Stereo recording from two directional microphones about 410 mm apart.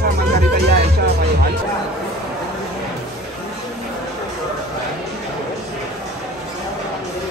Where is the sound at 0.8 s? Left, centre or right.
Right.